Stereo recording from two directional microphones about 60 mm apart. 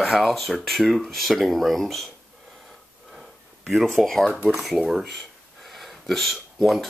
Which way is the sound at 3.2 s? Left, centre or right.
Centre.